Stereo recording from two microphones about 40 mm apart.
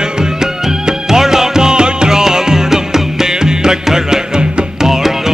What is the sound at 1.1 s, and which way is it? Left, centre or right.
Music, centre.